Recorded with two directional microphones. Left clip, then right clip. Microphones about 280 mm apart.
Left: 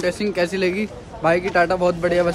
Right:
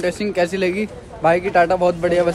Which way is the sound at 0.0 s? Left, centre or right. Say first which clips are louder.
Right 2 dB; centre.